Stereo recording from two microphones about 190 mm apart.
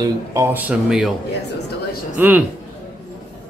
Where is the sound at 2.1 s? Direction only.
10° right (ahead or behind).